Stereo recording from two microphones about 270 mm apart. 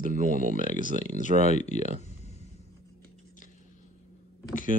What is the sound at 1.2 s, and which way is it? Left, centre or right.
Speech, left.